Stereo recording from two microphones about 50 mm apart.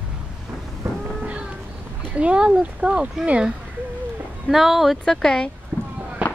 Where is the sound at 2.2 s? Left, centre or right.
Right.